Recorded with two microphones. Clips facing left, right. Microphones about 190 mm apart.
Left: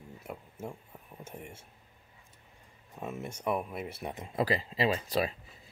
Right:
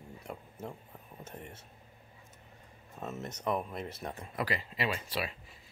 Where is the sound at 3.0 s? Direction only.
10° left (ahead or behind); by 5.3 s 35° left (ahead or behind).